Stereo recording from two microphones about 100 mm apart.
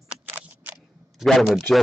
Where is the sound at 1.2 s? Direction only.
Centre (ahead or behind).